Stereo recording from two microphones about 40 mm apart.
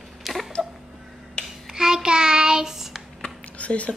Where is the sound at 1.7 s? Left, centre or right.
Centre.